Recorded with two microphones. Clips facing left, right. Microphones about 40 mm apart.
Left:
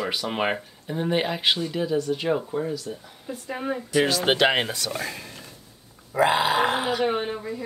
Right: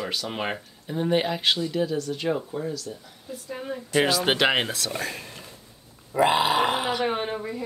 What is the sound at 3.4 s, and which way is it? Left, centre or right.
Speech, left.